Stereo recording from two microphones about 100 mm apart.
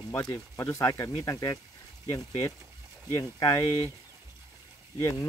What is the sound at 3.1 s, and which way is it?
Speech, 35° left (ahead or behind).